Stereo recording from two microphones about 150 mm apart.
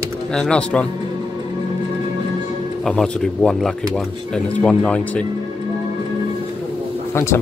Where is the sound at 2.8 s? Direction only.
5° left (ahead or behind).